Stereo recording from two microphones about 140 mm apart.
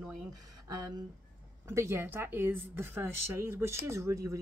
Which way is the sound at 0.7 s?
25° right (ahead or behind).